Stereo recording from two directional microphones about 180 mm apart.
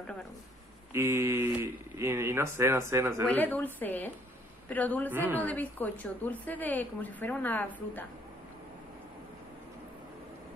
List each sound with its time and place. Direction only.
0.9 s speech: 15° right (ahead or behind)
3.3 s a woman's voice: 10° left (ahead or behind)
5.1 s speech: 10° right (ahead or behind)
5.4 s a woman's voice: 10° left (ahead or behind)